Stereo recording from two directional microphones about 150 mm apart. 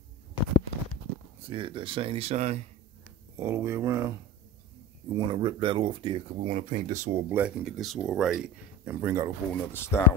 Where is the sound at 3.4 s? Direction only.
15° right (ahead or behind).